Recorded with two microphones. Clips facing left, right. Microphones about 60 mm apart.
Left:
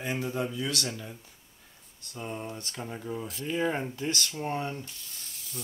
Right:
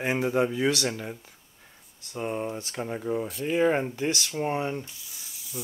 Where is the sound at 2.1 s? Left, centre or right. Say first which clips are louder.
Right 7 dB; right.